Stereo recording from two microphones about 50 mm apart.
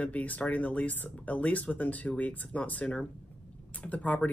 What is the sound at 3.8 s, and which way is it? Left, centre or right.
Speech, left.